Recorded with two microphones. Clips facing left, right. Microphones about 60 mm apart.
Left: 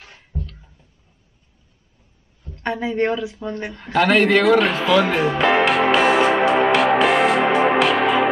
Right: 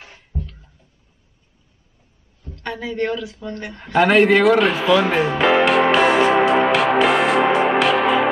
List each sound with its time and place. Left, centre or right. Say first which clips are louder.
2.5 s a woman's voice: left 4 dB; left
3.8 s music: right 2 dB; centre